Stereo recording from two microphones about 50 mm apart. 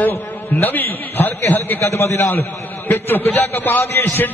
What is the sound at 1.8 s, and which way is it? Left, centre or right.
Speech, left.